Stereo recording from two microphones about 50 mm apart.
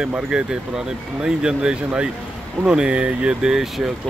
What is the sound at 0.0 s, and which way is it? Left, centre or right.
Speech, centre.